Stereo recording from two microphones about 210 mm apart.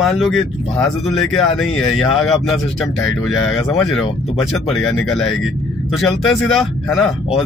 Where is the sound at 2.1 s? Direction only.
Centre (ahead or behind).